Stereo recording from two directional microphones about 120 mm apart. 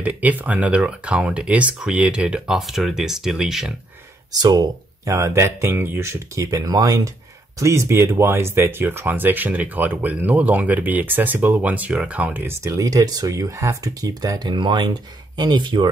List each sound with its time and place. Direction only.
0.0 s speech: 15° right (ahead or behind)
4.3 s speech: 35° right (ahead or behind)